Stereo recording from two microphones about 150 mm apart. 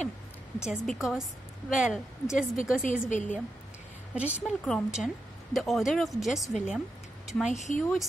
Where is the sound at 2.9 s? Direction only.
55° left (ahead or behind).